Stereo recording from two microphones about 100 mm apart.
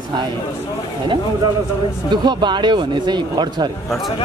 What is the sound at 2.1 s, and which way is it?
Speech, 50° right (ahead or behind).